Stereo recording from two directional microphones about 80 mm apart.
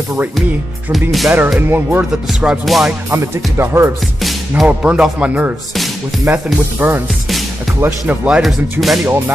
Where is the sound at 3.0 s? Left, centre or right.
Right.